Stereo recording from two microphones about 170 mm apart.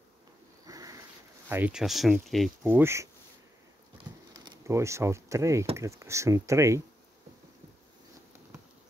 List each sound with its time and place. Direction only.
0.7 s sniff: 20° right (ahead or behind)
1.5 s speech: 5° right (ahead or behind)
2.6 s speech: 15° right (ahead or behind)
4.3 s speech: 25° right (ahead or behind)